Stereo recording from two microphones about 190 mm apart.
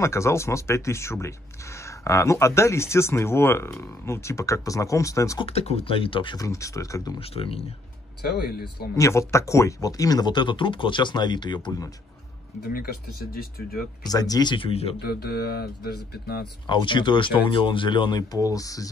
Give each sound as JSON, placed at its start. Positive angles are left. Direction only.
{"t": 0.0, "sound": "speech", "side_deg": 15}
{"t": 5.5, "sound": "speech", "side_deg": 35}
{"t": 7.2, "sound": "speech", "side_deg": 30}
{"t": 8.2, "sound": "speech", "side_deg": 60}
{"t": 8.9, "sound": "speech", "side_deg": 15}
{"t": 12.6, "sound": "speech", "side_deg": 50}
{"t": 14.0, "sound": "speech", "side_deg": 20}
{"t": 15.0, "sound": "speech", "side_deg": 55}
{"t": 16.6, "sound": "speech", "side_deg": 25}